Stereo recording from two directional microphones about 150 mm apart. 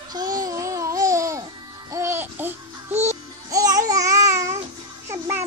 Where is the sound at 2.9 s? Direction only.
45° right (ahead or behind).